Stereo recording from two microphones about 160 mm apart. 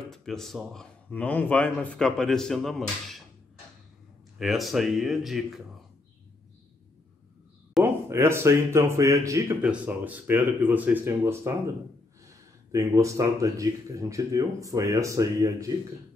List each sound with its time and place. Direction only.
0.1 s a man's voice: centre (ahead or behind)
4.4 s a man's voice: centre (ahead or behind)
7.8 s speech: 15° right (ahead or behind)
9.6 s speech: 10° right (ahead or behind)